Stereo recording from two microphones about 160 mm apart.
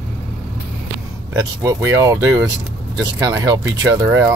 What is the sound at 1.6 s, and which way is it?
Speech, 20° right (ahead or behind).